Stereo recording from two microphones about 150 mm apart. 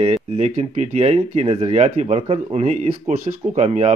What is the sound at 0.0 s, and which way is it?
Speech, 45° right (ahead or behind).